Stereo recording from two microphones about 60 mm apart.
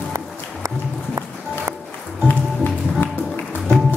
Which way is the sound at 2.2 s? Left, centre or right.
Left.